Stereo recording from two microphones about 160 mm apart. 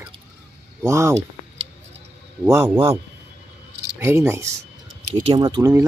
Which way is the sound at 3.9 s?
15° right (ahead or behind).